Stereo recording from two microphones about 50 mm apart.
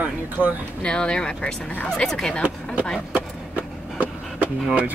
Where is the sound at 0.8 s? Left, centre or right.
Centre.